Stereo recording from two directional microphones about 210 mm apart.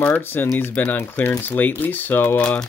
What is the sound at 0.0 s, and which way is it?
Speech, 10° left (ahead or behind).